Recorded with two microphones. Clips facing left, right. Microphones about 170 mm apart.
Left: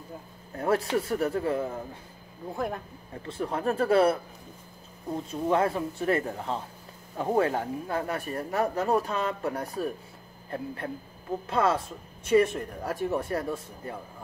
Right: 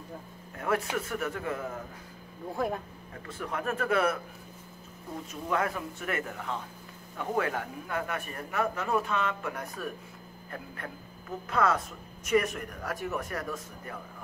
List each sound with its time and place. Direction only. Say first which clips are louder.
0.6 s speech: left 4 dB; 35° left (ahead or behind)
2.5 s speech: right 1 dB; centre (ahead or behind)
3.2 s speech: left 4 dB; 30° left (ahead or behind)